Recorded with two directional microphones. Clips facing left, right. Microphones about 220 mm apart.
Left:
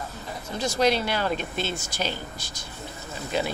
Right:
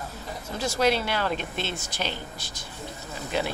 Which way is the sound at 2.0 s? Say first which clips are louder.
Left 2 dB; centre (ahead or behind).